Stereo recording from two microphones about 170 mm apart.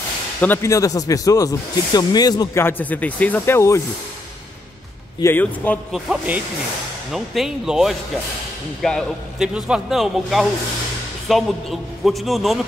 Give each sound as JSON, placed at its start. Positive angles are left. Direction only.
{"t": 0.4, "sound": "speech", "side_deg": 15}
{"t": 5.2, "sound": "speech", "side_deg": 10}
{"t": 5.9, "sound": "speech", "side_deg": 0}